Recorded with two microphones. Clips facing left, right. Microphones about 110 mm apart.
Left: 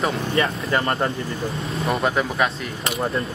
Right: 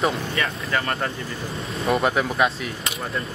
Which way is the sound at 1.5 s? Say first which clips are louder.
Right 3 dB; centre (ahead or behind).